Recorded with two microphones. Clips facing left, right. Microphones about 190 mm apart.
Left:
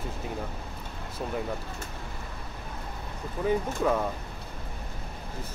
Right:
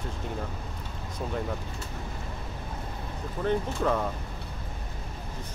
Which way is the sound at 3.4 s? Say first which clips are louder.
Left 1 dB; 5° left (ahead or behind).